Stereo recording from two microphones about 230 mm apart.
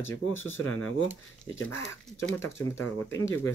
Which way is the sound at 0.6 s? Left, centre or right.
Left.